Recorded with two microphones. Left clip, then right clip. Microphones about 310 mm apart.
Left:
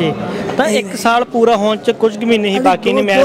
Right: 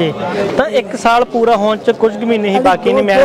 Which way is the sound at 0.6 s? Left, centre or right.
Centre.